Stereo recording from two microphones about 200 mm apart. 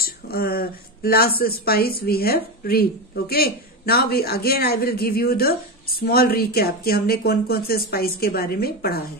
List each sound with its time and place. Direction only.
0.0 s speech: 50° left (ahead or behind)